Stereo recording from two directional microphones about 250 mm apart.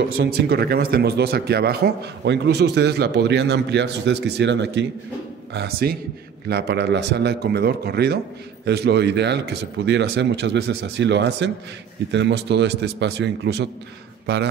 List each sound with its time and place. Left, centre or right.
0.2 s a man's voice: right